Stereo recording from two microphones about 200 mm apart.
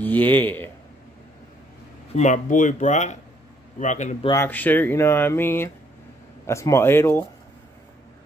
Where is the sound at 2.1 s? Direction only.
35° left (ahead or behind).